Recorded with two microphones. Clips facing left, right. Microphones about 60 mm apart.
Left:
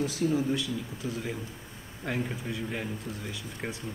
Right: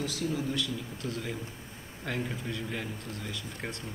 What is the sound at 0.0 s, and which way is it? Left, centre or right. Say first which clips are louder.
Speech: left 5 dB; left.